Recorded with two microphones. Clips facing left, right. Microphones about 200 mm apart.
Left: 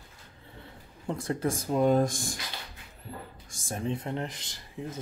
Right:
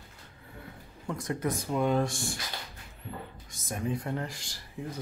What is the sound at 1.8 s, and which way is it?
Speech, 40° left (ahead or behind).